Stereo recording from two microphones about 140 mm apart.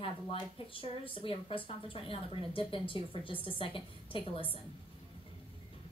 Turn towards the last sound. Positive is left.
turn(degrees=40)  # may be behind; listen again after turning